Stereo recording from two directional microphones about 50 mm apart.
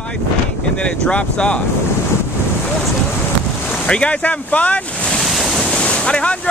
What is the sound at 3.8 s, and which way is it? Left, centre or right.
Speech, left.